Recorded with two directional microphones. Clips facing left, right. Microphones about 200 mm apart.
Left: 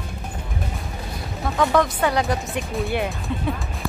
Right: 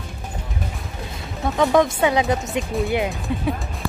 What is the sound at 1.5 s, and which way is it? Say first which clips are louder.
Speech: right 2 dB; 20° right (ahead or behind).